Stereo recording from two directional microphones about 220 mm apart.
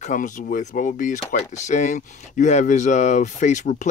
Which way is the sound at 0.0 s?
35° left (ahead or behind).